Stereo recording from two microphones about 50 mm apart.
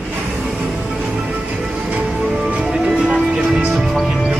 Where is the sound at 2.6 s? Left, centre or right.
Centre.